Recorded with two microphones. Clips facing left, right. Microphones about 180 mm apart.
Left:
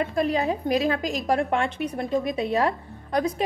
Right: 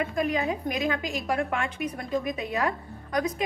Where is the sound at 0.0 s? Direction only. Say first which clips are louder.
Left 3 dB; 35° left (ahead or behind).